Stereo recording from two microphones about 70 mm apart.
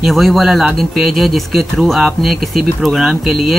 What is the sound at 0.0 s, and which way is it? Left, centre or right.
Speech, centre.